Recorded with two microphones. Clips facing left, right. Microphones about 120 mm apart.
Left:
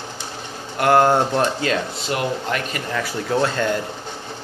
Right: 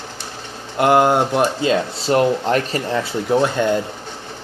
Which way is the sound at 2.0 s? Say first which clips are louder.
Right 7 dB; 35° right (ahead or behind).